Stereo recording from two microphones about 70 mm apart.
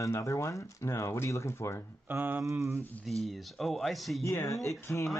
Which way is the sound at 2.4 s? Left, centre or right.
Right.